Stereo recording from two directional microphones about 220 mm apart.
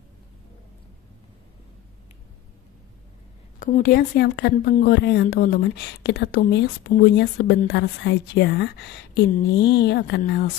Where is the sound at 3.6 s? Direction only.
40° left (ahead or behind).